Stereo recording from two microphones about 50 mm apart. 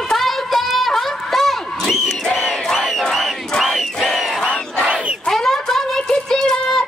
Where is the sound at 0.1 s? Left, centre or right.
Centre.